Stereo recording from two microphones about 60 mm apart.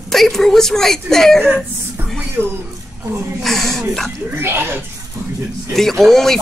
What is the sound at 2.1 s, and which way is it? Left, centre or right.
Music, right.